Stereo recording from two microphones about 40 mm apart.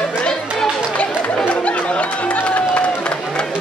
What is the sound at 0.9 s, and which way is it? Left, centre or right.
Chatter, left.